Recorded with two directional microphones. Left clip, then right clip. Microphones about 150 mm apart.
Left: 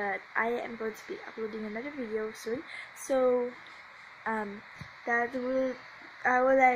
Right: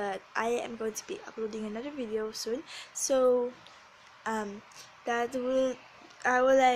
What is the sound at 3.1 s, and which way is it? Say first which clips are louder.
Speech: right 1 dB; 10° right (ahead or behind).